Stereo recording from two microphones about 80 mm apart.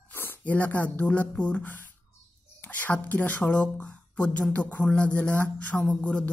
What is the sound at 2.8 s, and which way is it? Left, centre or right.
Speech, left.